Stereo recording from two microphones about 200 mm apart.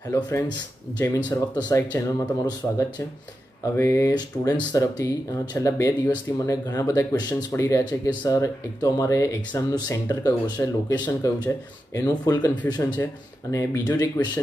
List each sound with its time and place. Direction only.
0.1 s speech: 15° left (ahead or behind)
3.7 s speech: 15° left (ahead or behind)